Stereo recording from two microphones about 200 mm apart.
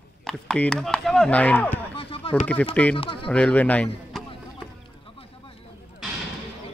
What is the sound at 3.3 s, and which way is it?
Speech, 5° left (ahead or behind).